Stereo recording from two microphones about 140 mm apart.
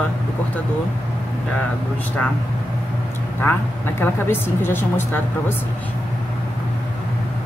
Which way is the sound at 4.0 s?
15° left (ahead or behind).